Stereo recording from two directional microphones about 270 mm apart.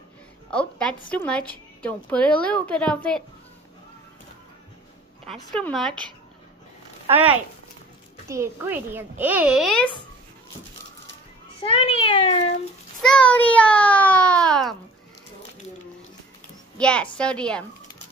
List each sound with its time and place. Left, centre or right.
0.5 s a woman's voice: centre
5.2 s a woman's voice: centre
11.6 s a child's voice: centre
13.0 s a woman's voice: centre
16.7 s a woman's voice: centre